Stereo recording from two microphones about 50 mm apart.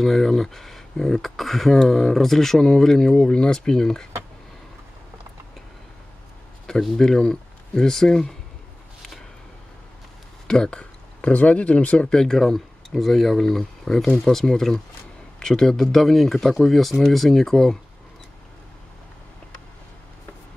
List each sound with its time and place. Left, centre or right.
0.0 s speech: centre
6.7 s speech: centre
10.4 s speech: centre
12.1 s speech: centre